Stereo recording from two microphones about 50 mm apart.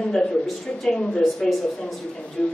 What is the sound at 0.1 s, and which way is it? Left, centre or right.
A woman's voice, centre.